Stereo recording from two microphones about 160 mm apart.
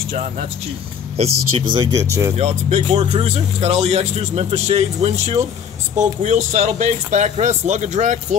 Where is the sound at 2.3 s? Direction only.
40° right (ahead or behind).